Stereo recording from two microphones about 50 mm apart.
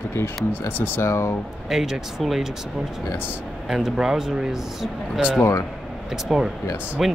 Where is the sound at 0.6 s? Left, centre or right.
Left.